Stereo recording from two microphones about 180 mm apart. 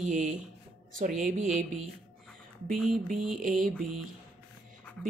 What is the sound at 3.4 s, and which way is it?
Speech, 50° right (ahead or behind).